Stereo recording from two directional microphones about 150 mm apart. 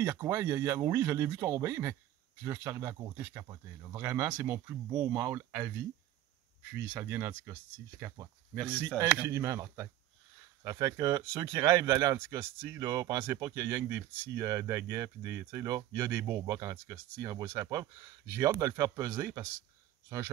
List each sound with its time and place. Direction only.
0.0 s speech: 15° right (ahead or behind)
6.7 s speech: 15° right (ahead or behind)
8.6 s speech: 15° right (ahead or behind)